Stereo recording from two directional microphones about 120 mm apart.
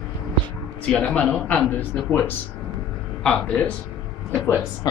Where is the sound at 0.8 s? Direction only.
10° left (ahead or behind).